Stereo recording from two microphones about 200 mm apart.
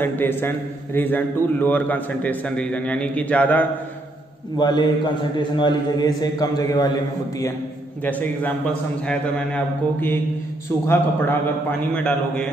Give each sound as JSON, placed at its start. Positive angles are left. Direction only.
{"t": 0.0, "sound": "a man's voice", "side_deg": 10}
{"t": 4.6, "sound": "a man's voice", "side_deg": 20}
{"t": 8.0, "sound": "a man's voice", "side_deg": 10}